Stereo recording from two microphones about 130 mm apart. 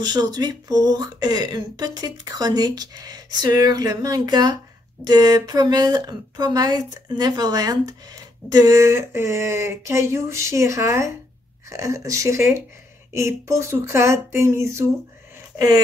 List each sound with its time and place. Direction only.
0.0 s a woman's voice: 30° right (ahead or behind)